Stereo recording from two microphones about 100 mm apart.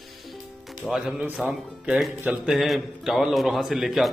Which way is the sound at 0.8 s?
Centre (ahead or behind).